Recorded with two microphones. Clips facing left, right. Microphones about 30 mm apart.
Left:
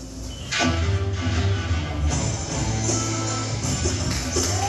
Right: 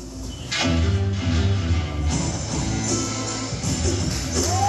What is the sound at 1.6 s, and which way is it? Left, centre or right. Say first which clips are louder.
Music: right 1 dB; centre.